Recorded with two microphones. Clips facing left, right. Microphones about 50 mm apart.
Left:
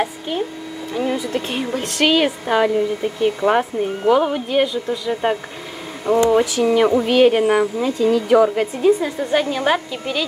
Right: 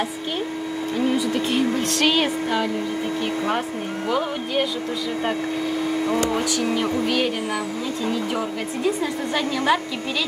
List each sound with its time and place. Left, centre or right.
2.0 s speech: centre
3.4 s speech: left
4.1 s speech: centre
6.0 s speech: left
6.6 s a sound: left
7.8 s speech: left
8.8 s a sound: left